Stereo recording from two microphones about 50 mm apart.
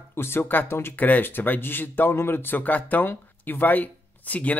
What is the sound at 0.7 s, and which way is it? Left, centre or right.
Speech, left.